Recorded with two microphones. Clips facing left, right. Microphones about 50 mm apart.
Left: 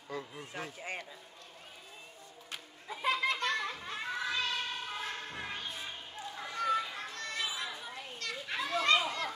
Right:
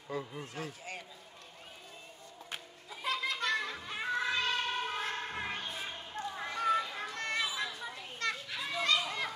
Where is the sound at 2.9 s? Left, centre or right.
Left.